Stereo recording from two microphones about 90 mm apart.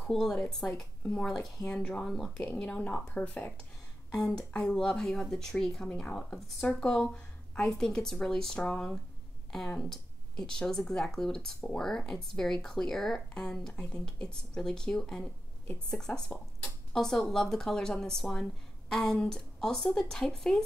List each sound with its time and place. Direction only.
0.0 s speech: 5° left (ahead or behind)
2.3 s a woman's voice: 20° left (ahead or behind)
2.6 s speech: 10° left (ahead or behind)
16.1 s a woman's voice: 20° left (ahead or behind)
16.9 s speech: 5° left (ahead or behind)